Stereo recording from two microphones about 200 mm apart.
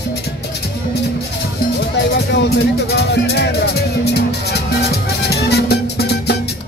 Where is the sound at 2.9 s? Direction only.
55° left (ahead or behind).